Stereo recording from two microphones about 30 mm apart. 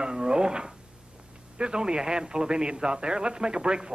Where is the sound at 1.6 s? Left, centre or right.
Right.